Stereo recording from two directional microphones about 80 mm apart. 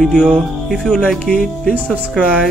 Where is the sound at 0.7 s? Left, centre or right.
Centre.